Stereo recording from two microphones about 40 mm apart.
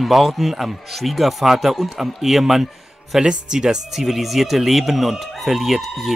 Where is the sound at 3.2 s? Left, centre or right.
Centre.